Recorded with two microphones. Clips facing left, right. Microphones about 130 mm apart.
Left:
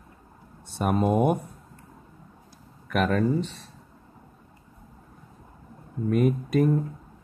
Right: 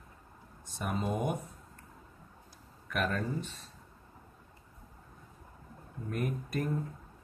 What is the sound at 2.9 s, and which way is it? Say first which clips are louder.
Speech: left 10 dB; 70° left (ahead or behind).